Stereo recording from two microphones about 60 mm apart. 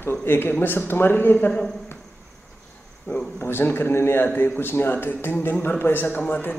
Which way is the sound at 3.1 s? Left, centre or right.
Left.